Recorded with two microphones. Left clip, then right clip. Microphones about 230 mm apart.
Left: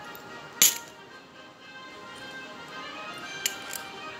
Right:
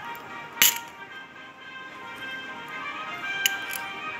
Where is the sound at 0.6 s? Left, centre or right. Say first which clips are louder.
Right 2 dB; centre.